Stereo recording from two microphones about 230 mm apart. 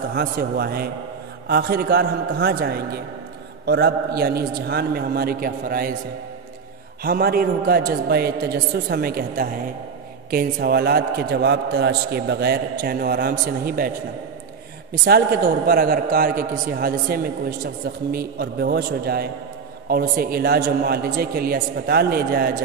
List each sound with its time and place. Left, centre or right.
0.1 s a man's voice: right
7.0 s a man's voice: right
15.0 s a man's voice: right